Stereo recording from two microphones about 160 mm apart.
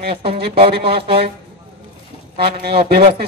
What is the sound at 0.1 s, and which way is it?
Speech, 35° right (ahead or behind).